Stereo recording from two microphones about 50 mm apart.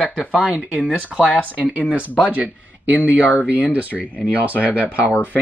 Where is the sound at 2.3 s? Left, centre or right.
Right.